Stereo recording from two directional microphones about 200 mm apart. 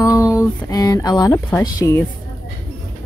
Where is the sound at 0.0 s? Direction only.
15° left (ahead or behind).